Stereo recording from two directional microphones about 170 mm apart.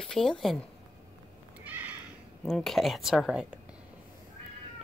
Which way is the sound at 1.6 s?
10° right (ahead or behind).